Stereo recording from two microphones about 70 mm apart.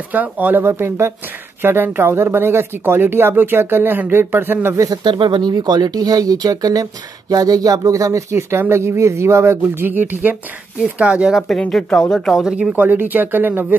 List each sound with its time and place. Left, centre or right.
0.1 s speech: right
4.7 s speech: right
10.8 s speech: centre
11.3 s speech: centre
12.7 s speech: right